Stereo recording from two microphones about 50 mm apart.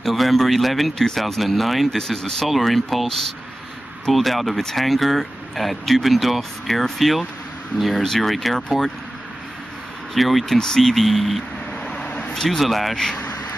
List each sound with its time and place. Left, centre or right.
0.0 s speech: centre
10.1 s speech: centre
11.9 s vehicle: left
12.4 s speech: centre
13.1 s vehicle: left